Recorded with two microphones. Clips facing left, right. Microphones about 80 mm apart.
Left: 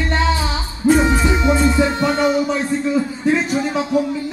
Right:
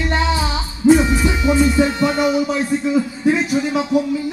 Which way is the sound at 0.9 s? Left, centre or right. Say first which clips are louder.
Left 1 dB; left.